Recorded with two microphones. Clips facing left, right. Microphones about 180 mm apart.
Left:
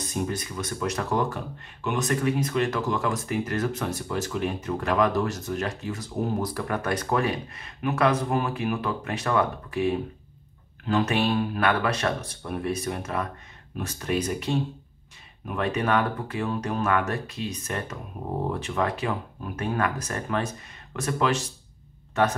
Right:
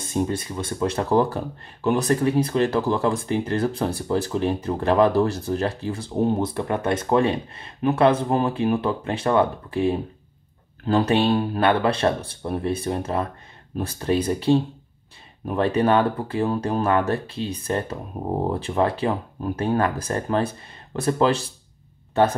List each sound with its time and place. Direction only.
0.0 s speech: 30° right (ahead or behind)